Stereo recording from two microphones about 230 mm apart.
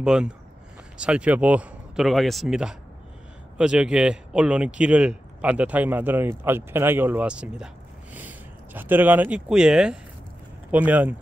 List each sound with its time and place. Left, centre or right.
0.0 s a man's voice: centre